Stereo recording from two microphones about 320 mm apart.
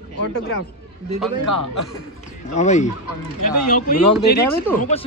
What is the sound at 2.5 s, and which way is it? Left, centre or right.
Speech, left.